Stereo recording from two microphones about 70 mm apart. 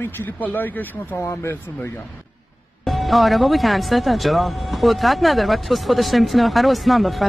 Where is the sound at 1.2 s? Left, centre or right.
Left.